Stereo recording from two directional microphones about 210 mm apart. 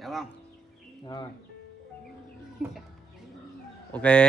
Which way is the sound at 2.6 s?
Centre (ahead or behind).